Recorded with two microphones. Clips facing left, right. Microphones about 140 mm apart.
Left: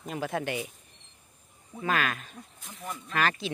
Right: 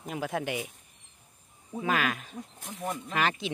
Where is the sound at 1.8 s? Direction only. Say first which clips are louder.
Even; 10° right (ahead or behind).